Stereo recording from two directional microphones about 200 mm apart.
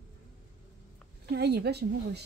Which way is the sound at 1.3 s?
55° right (ahead or behind).